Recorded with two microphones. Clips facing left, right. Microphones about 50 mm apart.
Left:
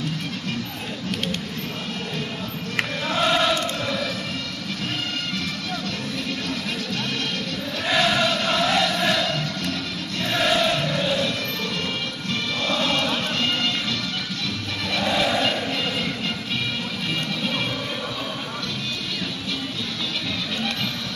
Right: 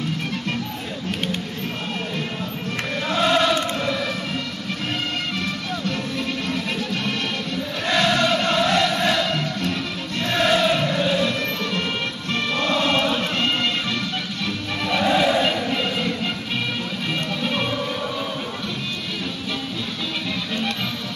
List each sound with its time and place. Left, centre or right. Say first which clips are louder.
3.1 s chant: right 2 dB; centre
3.8 s music: right 2 dB; centre
7.8 s crowd: right 1 dB; centre
10.2 s music: right 2 dB; centre
12.3 s music: right 3 dB; centre
14.9 s music: right 4 dB; centre